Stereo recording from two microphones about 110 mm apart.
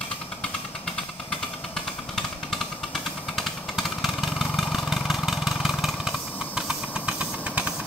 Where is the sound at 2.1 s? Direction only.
5° left (ahead or behind).